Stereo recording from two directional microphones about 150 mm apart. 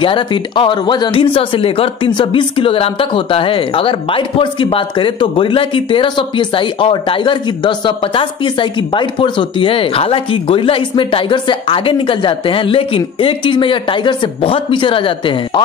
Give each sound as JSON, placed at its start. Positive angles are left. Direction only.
{"t": 0.0, "sound": "speech", "side_deg": 35}